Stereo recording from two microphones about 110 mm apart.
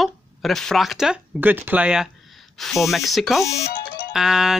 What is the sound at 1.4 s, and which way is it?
Speech, 15° right (ahead or behind).